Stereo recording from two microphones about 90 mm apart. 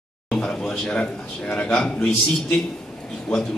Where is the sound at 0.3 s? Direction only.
10° left (ahead or behind).